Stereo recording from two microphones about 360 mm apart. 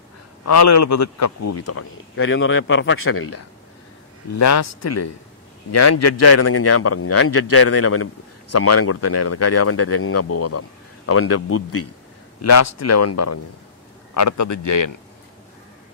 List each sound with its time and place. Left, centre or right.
0.5 s a man's voice: left